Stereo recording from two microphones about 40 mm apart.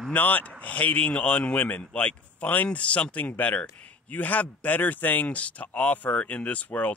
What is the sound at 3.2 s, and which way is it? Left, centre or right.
A man's voice, left.